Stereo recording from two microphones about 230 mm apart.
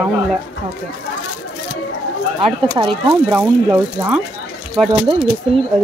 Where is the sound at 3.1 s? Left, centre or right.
Centre.